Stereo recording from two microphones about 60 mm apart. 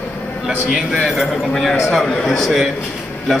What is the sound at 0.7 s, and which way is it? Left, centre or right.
A man's voice, centre.